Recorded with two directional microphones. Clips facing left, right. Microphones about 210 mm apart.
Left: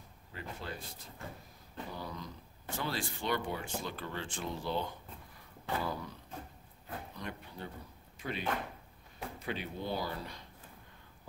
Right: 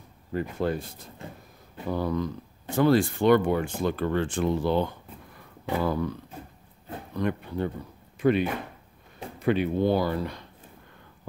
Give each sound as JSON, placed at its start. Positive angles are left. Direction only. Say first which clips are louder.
{"t": 0.3, "sound": "speech", "louder": "right 16 dB", "side_deg": -50}
{"t": 1.9, "sound": "speech", "louder": "right 18 dB", "side_deg": -60}
{"t": 7.2, "sound": "speech", "louder": "right 15 dB", "side_deg": -65}